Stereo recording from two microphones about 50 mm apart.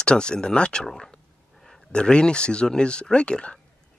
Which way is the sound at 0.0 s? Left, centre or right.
Centre.